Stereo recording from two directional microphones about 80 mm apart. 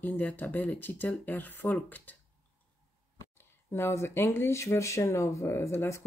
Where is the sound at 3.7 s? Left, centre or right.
Left.